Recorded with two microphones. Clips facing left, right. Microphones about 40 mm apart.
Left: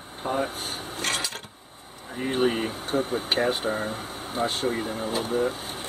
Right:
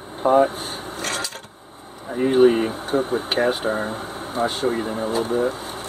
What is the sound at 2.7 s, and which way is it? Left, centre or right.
Speech, right.